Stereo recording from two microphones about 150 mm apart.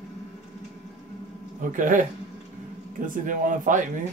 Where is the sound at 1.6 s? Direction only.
60° right (ahead or behind).